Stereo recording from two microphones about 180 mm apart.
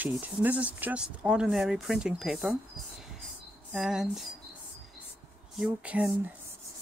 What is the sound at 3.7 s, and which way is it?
Speech, centre (ahead or behind).